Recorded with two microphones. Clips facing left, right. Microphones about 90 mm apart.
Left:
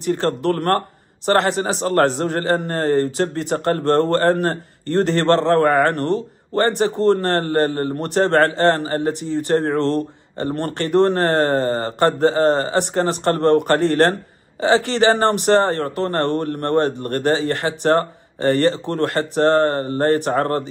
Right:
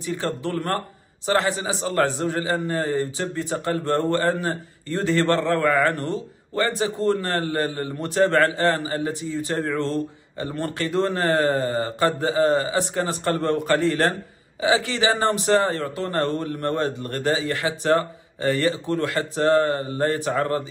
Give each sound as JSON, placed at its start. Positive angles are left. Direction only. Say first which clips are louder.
{"t": 0.0, "sound": "speech", "louder": "left 7 dB", "side_deg": 60}
{"t": 5.5, "sound": "speech", "louder": "left 5 dB", "side_deg": 50}
{"t": 10.4, "sound": "speech", "louder": "left 4 dB", "side_deg": 55}